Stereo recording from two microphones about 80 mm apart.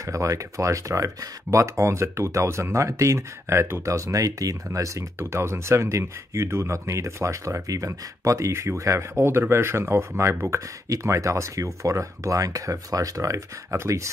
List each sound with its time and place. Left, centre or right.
0.0 s speech: right